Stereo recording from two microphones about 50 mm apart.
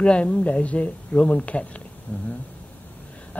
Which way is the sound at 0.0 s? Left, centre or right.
Centre.